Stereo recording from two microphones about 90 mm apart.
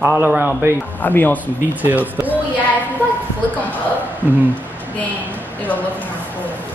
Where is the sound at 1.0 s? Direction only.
20° left (ahead or behind).